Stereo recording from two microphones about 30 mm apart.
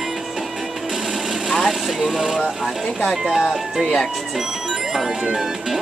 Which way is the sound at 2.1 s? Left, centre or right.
Centre.